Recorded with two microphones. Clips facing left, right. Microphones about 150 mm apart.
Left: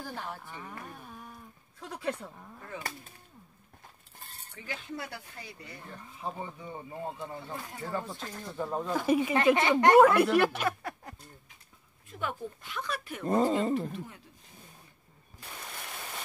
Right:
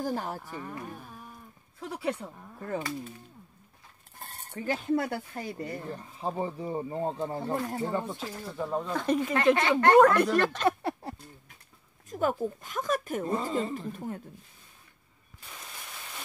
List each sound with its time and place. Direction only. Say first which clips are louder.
0.0 s speech: right 8 dB; 40° right (ahead or behind)
0.6 s speech: right 5 dB; 5° right (ahead or behind)
4.2 s speech: right 10 dB; 55° right (ahead or behind)
5.9 s speech: right 5 dB; 30° right (ahead or behind)
7.8 s speech: right 5 dB; 20° right (ahead or behind)
8.2 s speech: right 2 dB; 5° right (ahead or behind)
10.8 s a sound: right 8 dB; 30° right (ahead or behind)
12.1 s speech: right 8 dB; 40° right (ahead or behind)
13.2 s speech: left 3 dB; 45° left (ahead or behind)
13.7 s speech: left 1 dB; 45° right (ahead or behind)